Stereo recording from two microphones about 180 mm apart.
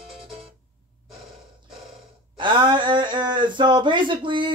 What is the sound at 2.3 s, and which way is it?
Speech, 25° right (ahead or behind).